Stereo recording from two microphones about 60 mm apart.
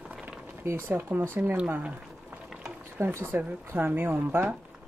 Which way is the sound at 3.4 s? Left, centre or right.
Right.